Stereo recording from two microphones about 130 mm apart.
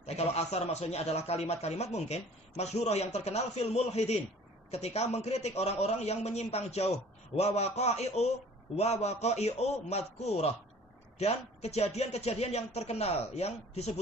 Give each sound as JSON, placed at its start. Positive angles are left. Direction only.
{"t": 0.0, "sound": "a man's voice", "side_deg": 55}